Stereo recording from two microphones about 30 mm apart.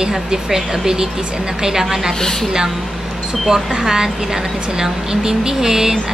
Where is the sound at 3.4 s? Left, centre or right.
Centre.